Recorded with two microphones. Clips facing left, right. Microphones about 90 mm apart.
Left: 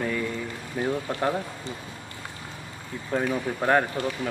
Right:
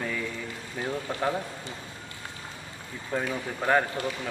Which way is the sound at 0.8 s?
15° left (ahead or behind).